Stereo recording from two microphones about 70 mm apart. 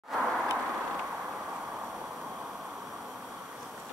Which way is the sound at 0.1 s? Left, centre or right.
Centre.